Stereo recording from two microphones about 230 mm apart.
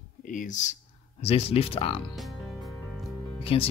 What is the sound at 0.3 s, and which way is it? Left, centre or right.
Speech, left.